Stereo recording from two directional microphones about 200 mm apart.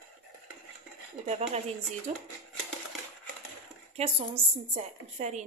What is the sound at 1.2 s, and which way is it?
A woman's voice, 30° right (ahead or behind).